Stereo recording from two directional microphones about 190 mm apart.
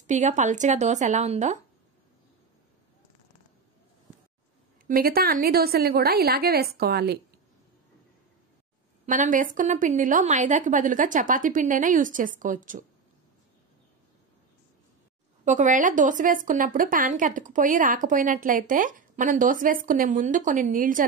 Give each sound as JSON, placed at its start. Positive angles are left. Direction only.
{"t": 0.0, "sound": "speech", "side_deg": -40}
{"t": 4.8, "sound": "speech", "side_deg": -50}
{"t": 9.0, "sound": "speech", "side_deg": -45}
{"t": 15.4, "sound": "speech", "side_deg": -40}